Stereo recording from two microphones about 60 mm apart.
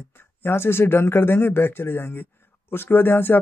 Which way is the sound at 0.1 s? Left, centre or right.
Left.